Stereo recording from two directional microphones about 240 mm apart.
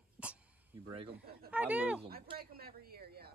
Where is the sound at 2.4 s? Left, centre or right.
Right.